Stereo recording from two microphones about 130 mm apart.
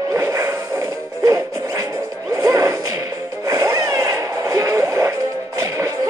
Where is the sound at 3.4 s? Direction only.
25° right (ahead or behind).